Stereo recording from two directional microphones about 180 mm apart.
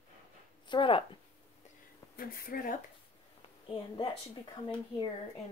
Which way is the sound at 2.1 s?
55° left (ahead or behind).